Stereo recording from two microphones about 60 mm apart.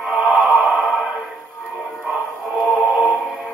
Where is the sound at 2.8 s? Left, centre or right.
Centre.